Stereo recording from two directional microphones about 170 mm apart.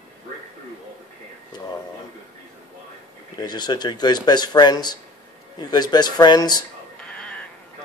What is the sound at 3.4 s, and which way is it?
Speech, 25° left (ahead or behind).